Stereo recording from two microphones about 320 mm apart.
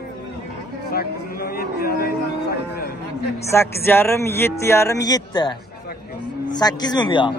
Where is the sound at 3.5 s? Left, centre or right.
Centre.